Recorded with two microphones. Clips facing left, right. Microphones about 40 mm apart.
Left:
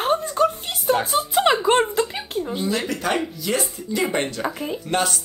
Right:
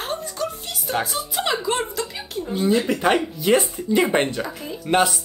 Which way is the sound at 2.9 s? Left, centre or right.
Right.